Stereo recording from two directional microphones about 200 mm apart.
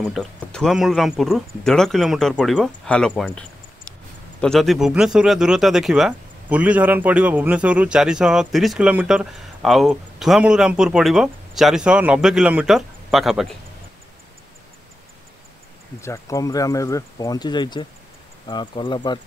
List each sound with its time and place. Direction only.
0.0 s speech: centre (ahead or behind)
16.0 s speech: 15° left (ahead or behind)